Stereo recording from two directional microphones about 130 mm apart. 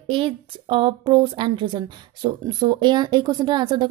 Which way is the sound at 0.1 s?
40° right (ahead or behind).